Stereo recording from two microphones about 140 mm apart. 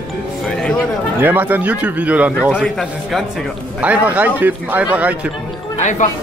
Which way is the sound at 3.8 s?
10° right (ahead or behind).